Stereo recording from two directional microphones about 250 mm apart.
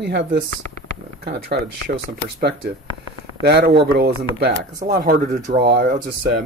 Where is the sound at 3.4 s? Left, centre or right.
Right.